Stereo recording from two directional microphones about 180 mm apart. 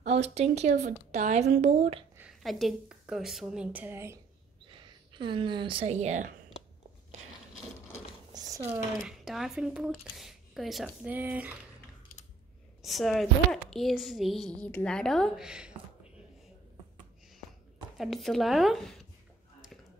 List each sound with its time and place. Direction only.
0.0 s speech: 35° right (ahead or behind)
2.1 s a woman's voice: centre (ahead or behind)
4.6 s a woman's voice: 25° right (ahead or behind)
8.3 s a sound: 20° right (ahead or behind)
8.7 s a woman's voice: 5° right (ahead or behind)
12.8 s a woman's voice: centre (ahead or behind)
17.9 s a woman's voice: centre (ahead or behind)